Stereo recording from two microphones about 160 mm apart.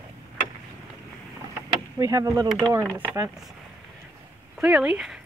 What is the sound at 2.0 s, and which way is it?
Speech, 20° right (ahead or behind).